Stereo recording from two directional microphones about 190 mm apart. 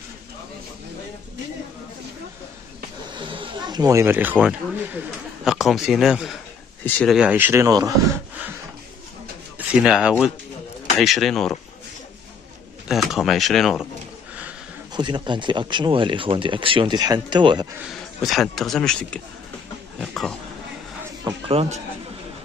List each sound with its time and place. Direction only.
3.2 s speech: 25° right (ahead or behind); by 7.2 s 5° left (ahead or behind)
7.2 s speech: 10° right (ahead or behind)
9.6 s speech: 5° right (ahead or behind)
12.8 s speech: centre (ahead or behind)
15.0 s speech: 25° right (ahead or behind)
18.2 s speech: centre (ahead or behind)
21.5 s speech: 35° right (ahead or behind)